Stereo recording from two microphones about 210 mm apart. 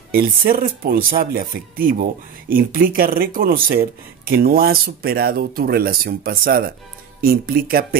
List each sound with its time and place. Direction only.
0.1 s speech: 45° right (ahead or behind)